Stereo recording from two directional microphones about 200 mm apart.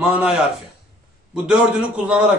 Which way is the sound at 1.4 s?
5° right (ahead or behind).